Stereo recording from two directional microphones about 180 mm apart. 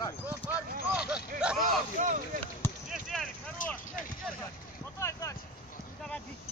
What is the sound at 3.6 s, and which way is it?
Vehicle, 45° left (ahead or behind).